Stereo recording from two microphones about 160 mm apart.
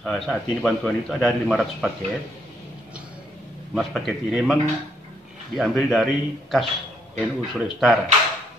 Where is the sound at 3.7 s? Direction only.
Centre (ahead or behind).